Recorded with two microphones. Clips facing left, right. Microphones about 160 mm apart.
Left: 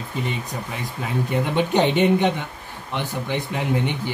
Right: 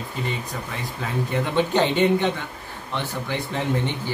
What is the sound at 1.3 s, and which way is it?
Speech, 15° left (ahead or behind).